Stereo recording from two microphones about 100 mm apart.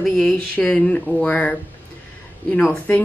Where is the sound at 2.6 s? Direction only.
15° left (ahead or behind).